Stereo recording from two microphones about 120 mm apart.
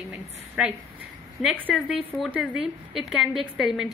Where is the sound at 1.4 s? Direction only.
Centre (ahead or behind).